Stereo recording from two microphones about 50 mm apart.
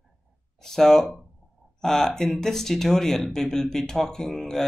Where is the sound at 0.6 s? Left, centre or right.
Centre.